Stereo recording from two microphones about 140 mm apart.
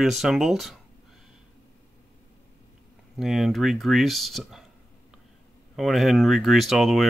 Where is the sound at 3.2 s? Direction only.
Centre (ahead or behind).